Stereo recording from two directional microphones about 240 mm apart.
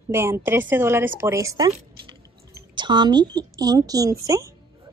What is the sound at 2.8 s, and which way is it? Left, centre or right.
A woman's voice, centre.